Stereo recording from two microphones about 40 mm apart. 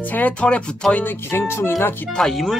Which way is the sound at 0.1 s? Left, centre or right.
Left.